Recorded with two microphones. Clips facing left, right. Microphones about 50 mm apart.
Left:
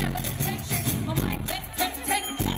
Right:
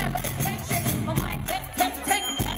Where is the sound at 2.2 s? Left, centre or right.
Right.